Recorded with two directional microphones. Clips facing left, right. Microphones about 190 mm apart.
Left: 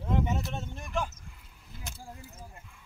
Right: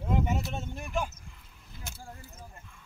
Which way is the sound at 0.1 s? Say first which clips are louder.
Even; 5° right (ahead or behind).